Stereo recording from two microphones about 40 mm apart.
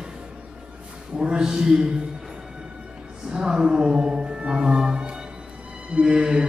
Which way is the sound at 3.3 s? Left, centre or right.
Centre.